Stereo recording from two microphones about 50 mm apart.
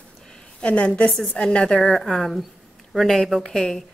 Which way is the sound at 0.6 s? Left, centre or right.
Left.